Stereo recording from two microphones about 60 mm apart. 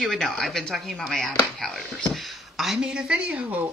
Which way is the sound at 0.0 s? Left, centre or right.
Centre.